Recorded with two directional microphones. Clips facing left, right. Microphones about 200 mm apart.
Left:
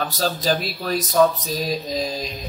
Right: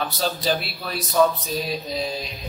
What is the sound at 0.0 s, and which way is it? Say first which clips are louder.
A man's voice: left 2 dB; 40° left (ahead or behind).